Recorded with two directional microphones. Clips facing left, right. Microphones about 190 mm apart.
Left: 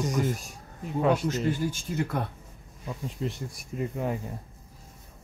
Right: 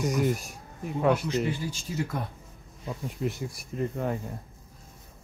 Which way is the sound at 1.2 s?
45° left (ahead or behind).